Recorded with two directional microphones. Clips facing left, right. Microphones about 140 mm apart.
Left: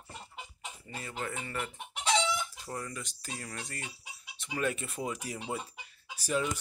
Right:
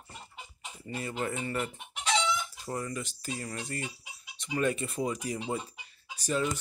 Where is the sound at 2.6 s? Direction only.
10° right (ahead or behind).